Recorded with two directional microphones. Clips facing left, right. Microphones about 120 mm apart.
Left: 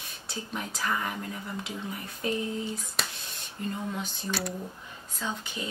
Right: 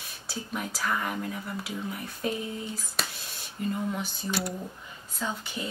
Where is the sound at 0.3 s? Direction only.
5° right (ahead or behind).